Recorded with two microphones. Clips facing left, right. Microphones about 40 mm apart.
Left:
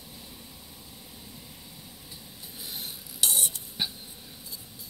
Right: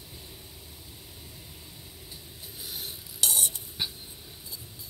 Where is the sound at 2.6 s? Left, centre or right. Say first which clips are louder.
Even; left.